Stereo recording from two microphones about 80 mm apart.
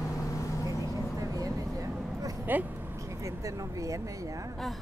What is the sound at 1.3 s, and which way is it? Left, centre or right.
Vehicle, right.